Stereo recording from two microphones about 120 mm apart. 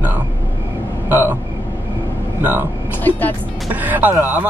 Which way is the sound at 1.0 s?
15° right (ahead or behind).